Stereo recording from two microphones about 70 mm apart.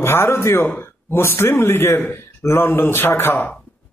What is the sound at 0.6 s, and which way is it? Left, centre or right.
A man's voice, left.